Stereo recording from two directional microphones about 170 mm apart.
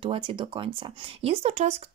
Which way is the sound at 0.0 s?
30° right (ahead or behind).